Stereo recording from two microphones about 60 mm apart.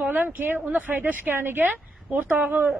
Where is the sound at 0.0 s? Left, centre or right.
Right.